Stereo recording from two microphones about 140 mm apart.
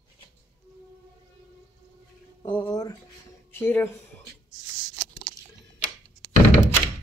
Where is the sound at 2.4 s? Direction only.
35° left (ahead or behind).